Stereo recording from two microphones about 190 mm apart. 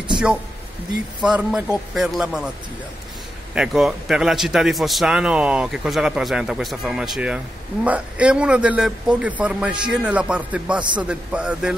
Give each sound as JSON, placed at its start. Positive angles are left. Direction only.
{"t": 1.2, "sound": "a man's voice", "side_deg": -5}
{"t": 3.5, "sound": "a man's voice", "side_deg": -5}